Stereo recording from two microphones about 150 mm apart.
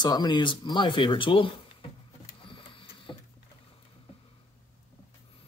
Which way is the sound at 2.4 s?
35° left (ahead or behind).